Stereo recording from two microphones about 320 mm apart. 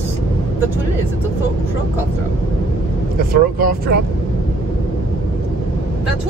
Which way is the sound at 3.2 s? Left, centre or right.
Right.